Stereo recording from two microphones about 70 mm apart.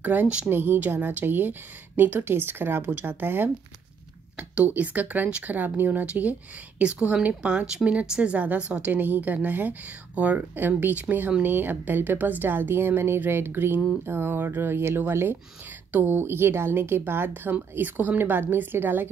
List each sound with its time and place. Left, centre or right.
0.0 s a woman's voice: right
8.9 s a woman's voice: right